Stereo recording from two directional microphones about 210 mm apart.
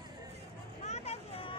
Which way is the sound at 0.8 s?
30° left (ahead or behind).